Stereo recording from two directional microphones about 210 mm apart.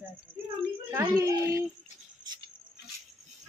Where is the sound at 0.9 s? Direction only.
15° right (ahead or behind).